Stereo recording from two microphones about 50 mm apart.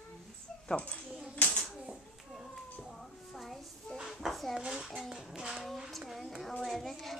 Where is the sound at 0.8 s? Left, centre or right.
Left.